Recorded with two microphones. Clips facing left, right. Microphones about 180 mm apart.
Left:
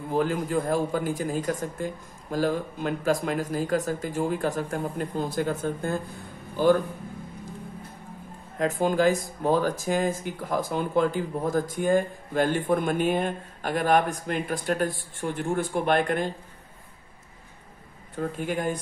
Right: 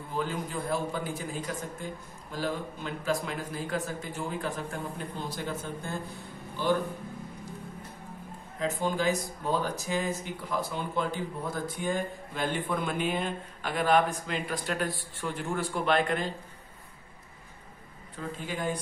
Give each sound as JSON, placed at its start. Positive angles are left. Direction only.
{"t": 0.1, "sound": "speech", "side_deg": 45}
{"t": 8.5, "sound": "speech", "side_deg": 50}
{"t": 9.1, "sound": "speech", "side_deg": 90}
{"t": 9.5, "sound": "speech", "side_deg": 50}
{"t": 18.1, "sound": "speech", "side_deg": 55}